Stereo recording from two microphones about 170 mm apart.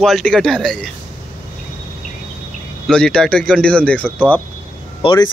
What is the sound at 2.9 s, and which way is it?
Speech, 5° left (ahead or behind).